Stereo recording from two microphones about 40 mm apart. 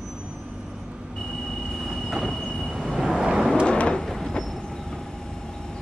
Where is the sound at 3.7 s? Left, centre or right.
Left.